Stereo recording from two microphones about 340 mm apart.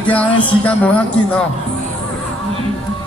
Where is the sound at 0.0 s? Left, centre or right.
Centre.